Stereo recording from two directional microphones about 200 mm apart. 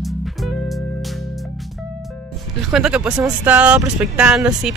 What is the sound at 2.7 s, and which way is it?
Speech, 5° right (ahead or behind).